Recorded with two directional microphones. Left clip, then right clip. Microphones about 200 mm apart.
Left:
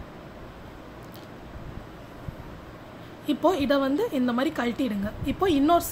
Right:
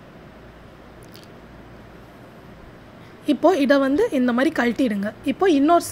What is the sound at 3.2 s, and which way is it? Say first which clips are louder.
A woman's voice: right 6 dB; 25° right (ahead or behind).